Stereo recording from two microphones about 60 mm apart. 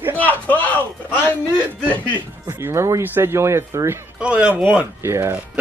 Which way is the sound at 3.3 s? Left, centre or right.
Right.